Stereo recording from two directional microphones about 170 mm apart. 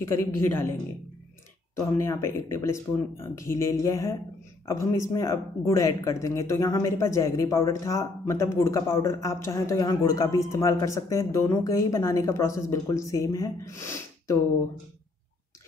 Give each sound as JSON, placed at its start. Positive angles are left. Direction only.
{"t": 0.0, "sound": "speech", "side_deg": 15}
{"t": 1.8, "sound": "speech", "side_deg": 15}